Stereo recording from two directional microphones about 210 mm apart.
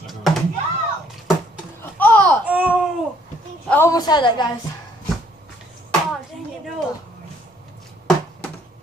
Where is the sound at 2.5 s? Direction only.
5° right (ahead or behind).